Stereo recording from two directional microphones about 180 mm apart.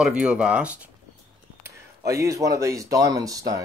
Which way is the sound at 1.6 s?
15° right (ahead or behind).